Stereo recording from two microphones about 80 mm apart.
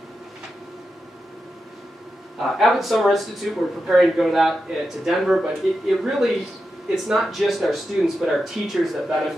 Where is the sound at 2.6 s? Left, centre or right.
Centre.